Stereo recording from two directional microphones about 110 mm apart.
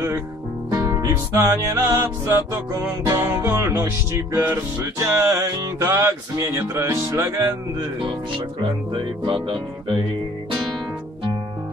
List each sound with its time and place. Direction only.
0.7 s music: 30° right (ahead or behind)
8.9 s music: 50° right (ahead or behind)